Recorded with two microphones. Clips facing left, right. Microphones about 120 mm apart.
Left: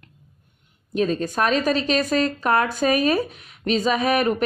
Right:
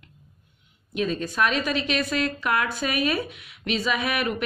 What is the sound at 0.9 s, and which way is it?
A woman's voice, 40° left (ahead or behind).